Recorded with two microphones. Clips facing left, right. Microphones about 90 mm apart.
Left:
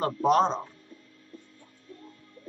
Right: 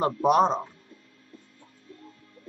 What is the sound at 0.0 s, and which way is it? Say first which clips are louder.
Speech: right 2 dB; 15° right (ahead or behind).